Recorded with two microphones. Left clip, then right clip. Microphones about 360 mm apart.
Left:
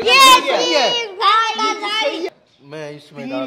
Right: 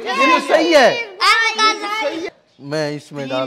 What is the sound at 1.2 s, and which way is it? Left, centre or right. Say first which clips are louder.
Child singing: right 1 dB; right.